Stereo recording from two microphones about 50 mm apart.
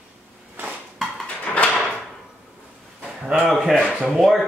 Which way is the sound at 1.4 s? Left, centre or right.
Left.